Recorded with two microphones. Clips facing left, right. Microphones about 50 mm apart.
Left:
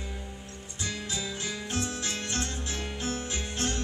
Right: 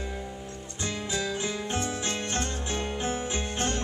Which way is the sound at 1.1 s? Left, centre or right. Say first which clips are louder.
Right 5 dB; centre.